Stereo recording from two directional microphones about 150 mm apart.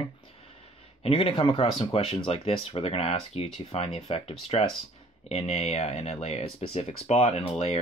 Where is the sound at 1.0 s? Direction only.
40° left (ahead or behind).